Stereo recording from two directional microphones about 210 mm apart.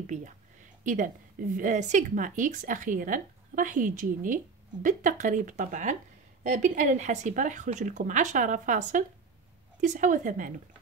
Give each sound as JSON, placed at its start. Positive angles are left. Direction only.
{"t": 0.0, "sound": "speech", "side_deg": -35}